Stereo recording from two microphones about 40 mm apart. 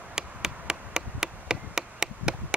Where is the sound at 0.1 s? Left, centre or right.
Centre.